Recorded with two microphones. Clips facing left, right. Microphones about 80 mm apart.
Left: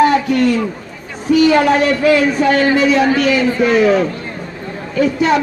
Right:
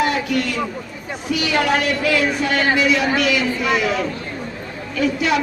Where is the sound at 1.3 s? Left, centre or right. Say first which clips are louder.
Left 8 dB; left.